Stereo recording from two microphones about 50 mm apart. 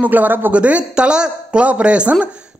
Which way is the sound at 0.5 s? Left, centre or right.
Right.